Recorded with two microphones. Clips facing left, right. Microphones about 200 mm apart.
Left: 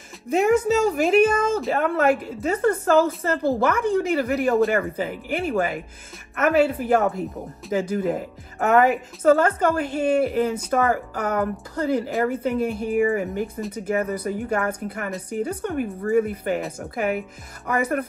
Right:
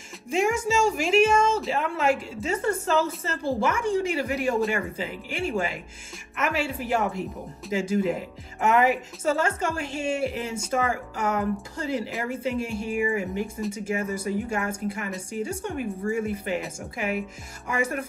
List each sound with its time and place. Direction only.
0.5 s a woman's voice: 60° left (ahead or behind)